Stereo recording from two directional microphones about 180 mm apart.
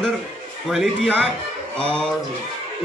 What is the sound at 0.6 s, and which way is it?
Speech, centre (ahead or behind).